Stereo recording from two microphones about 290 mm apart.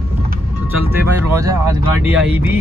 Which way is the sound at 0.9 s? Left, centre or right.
Centre.